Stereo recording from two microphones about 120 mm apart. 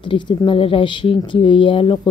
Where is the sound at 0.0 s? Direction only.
45° left (ahead or behind).